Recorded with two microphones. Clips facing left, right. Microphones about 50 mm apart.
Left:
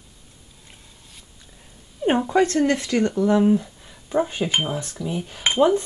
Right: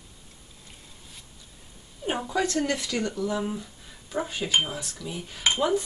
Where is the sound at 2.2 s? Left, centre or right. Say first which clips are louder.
Left 5 dB; left.